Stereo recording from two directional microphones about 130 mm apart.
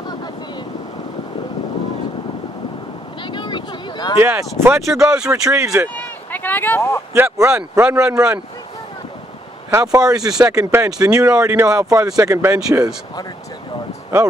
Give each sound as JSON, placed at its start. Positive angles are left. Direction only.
{"t": 3.3, "sound": "a sound", "side_deg": 35}
{"t": 4.2, "sound": "speech", "side_deg": -15}
{"t": 5.0, "sound": "speech", "side_deg": -5}
{"t": 5.5, "sound": "speech", "side_deg": -20}
{"t": 5.9, "sound": "a sound", "side_deg": 15}
{"t": 7.2, "sound": "speech", "side_deg": -20}
{"t": 9.7, "sound": "speech", "side_deg": -25}